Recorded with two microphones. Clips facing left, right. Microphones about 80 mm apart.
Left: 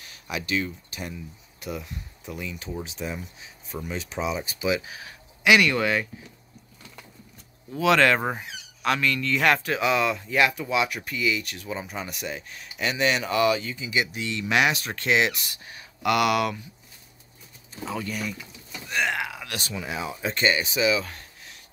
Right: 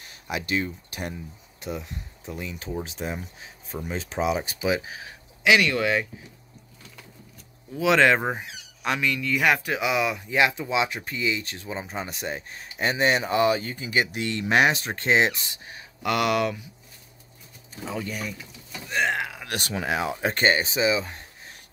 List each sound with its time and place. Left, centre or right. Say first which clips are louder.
0.1 s speech: right 1 dB; right
0.8 s speech: right 2 dB; right
1.8 s speech: even; right
2.8 s speech: even; right
4.2 s speech: right 4 dB; right
5.6 s speech: even; centre
7.8 s speech: right 1 dB; centre
13.6 s speech: right 2 dB; right
14.5 s speech: right 2 dB; right
17.8 s speech: left 1 dB; centre
18.9 s a sound: right 2 dB; right
19.6 s speech: right 6 dB; right